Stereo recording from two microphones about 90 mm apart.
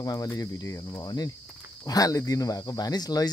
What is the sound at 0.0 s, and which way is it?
Speech, 45° left (ahead or behind).